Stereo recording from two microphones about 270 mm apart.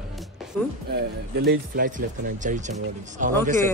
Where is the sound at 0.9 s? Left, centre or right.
Right.